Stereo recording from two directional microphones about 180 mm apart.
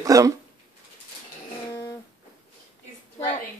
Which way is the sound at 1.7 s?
20° left (ahead or behind).